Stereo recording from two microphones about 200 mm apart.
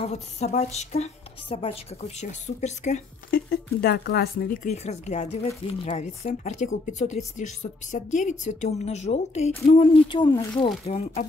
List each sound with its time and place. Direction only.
0.0 s a woman's voice: 35° left (ahead or behind); by 4.6 s 50° left (ahead or behind)
4.6 s a woman's voice: 35° left (ahead or behind)